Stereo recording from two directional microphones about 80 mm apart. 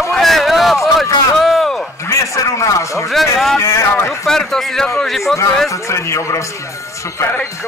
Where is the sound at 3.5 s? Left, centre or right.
Left.